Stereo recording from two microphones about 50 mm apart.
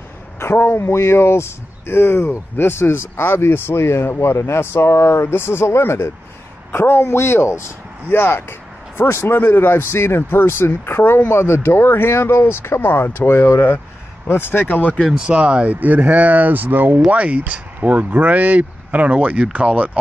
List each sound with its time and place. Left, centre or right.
0.4 s speech: left
8.1 s speech: left
9.8 s speech: left
11.2 s speech: left
15.1 s speech: right
17.1 s speech: right